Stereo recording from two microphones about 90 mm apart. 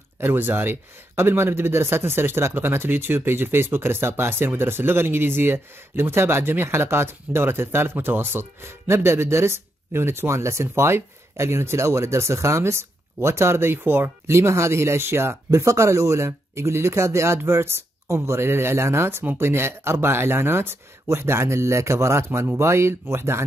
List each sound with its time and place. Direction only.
0.2 s speech: 25° right (ahead or behind)